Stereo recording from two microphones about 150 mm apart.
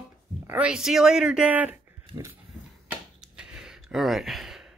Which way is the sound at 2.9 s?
5° right (ahead or behind).